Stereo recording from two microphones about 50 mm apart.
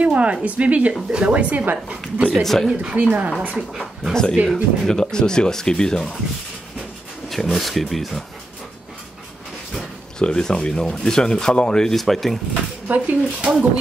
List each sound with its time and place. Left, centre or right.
0.0 s speech: right
2.4 s speech: centre
2.7 s speech: centre
3.0 s speech: right
3.7 s speech: centre
4.1 s speech: centre
7.2 s speech: centre
9.8 s speech: centre
12.8 s speech: right